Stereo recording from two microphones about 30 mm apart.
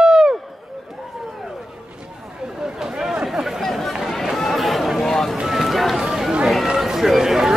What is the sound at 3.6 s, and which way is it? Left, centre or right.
Chatter, centre.